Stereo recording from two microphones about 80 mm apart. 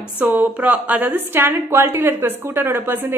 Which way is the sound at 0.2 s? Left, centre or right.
Right.